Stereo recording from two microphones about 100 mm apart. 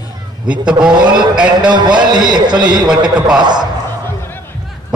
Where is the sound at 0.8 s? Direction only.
10° right (ahead or behind).